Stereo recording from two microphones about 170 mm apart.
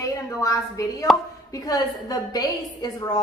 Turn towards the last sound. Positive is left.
turn(degrees=25)  # may be behind; listen again after turning